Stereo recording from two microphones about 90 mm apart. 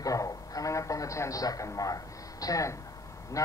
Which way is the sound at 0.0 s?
40° left (ahead or behind).